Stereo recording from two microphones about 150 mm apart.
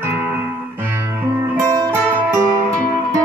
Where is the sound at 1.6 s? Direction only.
20° right (ahead or behind).